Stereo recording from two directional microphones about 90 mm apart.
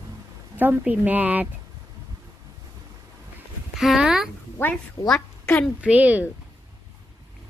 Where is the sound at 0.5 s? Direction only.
20° right (ahead or behind).